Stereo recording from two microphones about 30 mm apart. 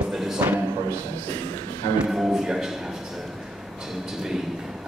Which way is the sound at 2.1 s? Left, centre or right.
Centre.